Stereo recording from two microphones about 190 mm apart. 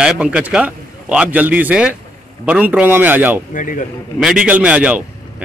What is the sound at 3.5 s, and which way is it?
Speech, 45° left (ahead or behind).